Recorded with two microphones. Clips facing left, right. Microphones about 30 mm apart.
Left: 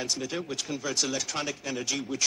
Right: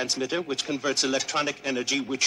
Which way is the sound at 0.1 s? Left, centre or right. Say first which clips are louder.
Right 4 dB; centre.